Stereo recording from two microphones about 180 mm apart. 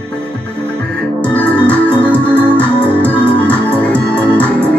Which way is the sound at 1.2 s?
5° left (ahead or behind).